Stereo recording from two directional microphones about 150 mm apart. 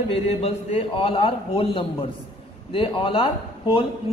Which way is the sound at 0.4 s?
40° left (ahead or behind).